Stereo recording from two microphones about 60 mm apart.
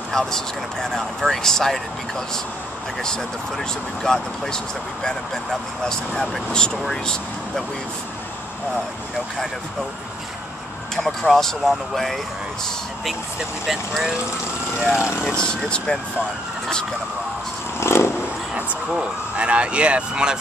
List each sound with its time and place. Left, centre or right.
0.1 s speech: centre
11.0 s speech: centre
14.8 s speech: centre
15.3 s speech: centre
17.7 s vehicle: left
18.5 s speech: centre